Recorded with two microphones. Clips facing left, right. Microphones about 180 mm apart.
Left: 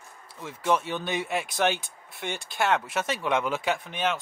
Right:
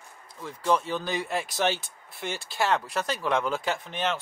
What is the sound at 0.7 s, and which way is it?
Speech, 5° left (ahead or behind).